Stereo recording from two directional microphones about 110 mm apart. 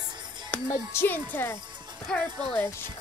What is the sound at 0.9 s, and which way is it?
Speech, 15° left (ahead or behind).